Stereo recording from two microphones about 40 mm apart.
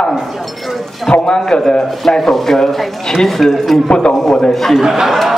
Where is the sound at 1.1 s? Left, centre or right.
Centre.